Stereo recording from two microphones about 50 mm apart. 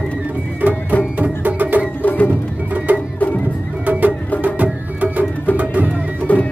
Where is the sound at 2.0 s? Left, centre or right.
Left.